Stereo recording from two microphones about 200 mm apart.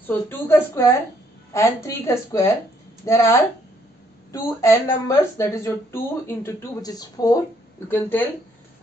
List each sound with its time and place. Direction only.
0.0 s speech: 10° left (ahead or behind)